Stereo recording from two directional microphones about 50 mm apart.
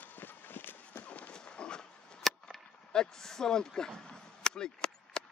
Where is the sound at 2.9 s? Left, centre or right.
Centre.